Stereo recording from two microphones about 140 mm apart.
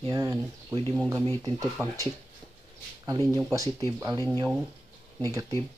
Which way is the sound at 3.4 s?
25° right (ahead or behind).